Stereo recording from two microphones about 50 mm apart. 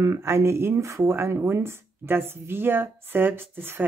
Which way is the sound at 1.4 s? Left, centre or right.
Right.